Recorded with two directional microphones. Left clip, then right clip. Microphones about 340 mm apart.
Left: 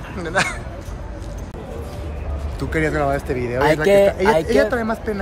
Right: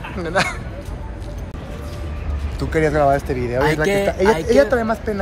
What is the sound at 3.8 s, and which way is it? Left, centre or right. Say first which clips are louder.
Speech: left 5 dB; centre.